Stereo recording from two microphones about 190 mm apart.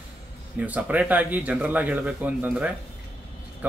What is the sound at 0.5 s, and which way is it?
Speech, 10° right (ahead or behind).